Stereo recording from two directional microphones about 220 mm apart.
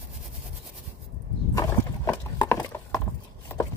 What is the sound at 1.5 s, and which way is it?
Horse, 15° left (ahead or behind).